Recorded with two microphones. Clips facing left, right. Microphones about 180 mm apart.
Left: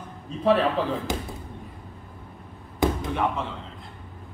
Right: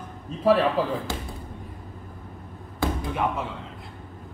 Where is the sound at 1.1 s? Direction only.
20° left (ahead or behind).